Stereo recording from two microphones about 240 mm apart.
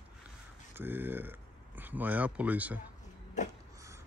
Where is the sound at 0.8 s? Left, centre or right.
Centre.